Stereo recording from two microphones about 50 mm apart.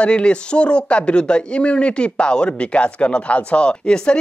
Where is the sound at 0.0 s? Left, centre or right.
Left.